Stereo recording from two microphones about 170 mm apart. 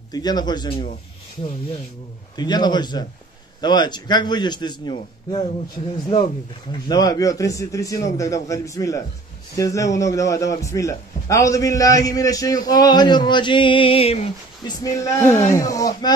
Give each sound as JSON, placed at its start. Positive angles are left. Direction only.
{"t": 0.1, "sound": "a man's voice", "side_deg": 25}
{"t": 2.3, "sound": "a man's voice", "side_deg": 25}